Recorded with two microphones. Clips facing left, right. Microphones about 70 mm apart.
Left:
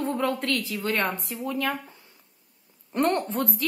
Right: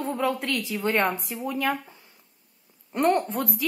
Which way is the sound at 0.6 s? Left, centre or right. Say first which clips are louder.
Right 2 dB; right.